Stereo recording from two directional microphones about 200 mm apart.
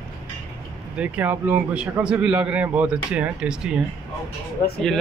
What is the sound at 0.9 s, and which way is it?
A man's voice, 10° right (ahead or behind).